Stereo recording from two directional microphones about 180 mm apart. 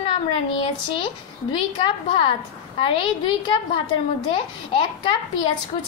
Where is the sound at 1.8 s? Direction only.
25° left (ahead or behind).